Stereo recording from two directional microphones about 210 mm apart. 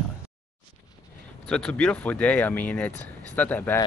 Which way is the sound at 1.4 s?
5° left (ahead or behind).